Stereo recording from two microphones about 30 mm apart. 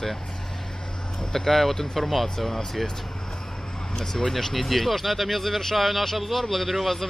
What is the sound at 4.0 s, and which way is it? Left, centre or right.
Speech, centre.